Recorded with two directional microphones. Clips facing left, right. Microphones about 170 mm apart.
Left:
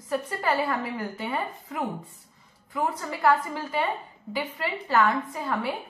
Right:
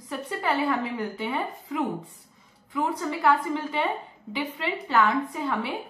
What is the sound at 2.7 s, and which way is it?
Speech, centre (ahead or behind).